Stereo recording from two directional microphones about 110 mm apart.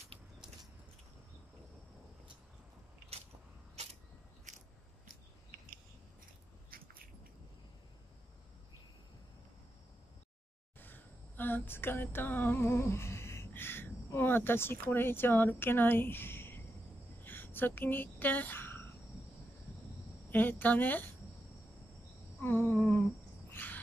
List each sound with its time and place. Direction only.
3.1 s biting: 70° right (ahead or behind)
10.8 s a sound: 20° left (ahead or behind)
20.2 s speech: 15° left (ahead or behind)
22.4 s humming: 20° left (ahead or behind)
23.5 s cricket: 15° left (ahead or behind)